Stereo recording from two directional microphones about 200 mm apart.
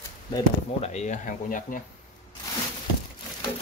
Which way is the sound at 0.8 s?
35° left (ahead or behind).